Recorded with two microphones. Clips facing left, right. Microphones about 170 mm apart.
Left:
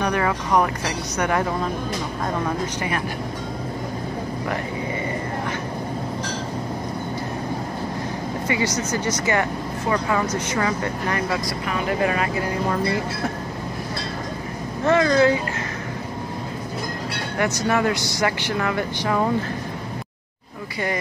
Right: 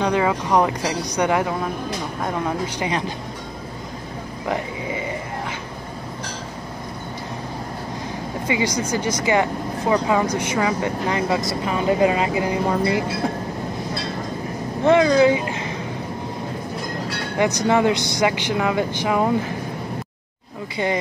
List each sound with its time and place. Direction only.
0.0 s speech: 15° right (ahead or behind)
8.5 s speech: 15° right (ahead or behind)
14.8 s speech: 15° right (ahead or behind)
17.4 s speech: 20° right (ahead or behind)